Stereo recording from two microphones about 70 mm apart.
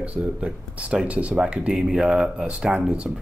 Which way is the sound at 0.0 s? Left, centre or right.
Centre.